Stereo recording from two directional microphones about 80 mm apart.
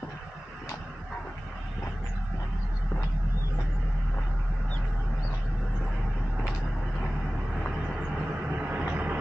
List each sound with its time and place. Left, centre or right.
8.5 s vehicle: centre